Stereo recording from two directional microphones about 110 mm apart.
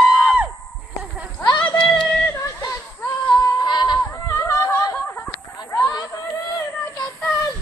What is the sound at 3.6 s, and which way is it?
Goat, 40° left (ahead or behind).